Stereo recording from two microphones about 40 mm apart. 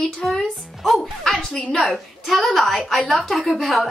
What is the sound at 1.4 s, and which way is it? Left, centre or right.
A woman's voice, centre.